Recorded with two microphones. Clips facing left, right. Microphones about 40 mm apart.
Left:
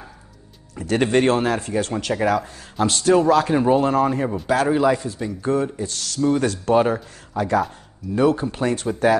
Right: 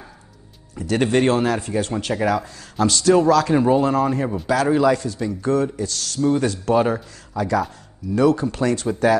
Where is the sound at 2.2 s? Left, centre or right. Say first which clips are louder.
Left 1 dB; left.